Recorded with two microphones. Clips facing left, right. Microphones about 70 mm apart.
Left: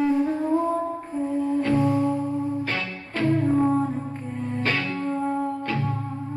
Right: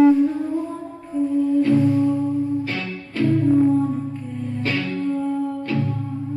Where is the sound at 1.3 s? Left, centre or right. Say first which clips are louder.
Right 5 dB; left.